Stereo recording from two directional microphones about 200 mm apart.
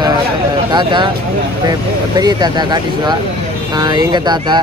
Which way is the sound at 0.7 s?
25° right (ahead or behind).